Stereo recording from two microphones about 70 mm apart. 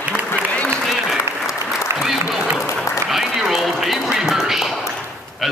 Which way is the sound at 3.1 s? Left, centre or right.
Centre.